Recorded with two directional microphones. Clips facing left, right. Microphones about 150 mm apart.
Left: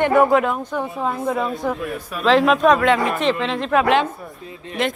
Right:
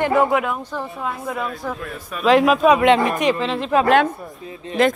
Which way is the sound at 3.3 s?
Centre (ahead or behind).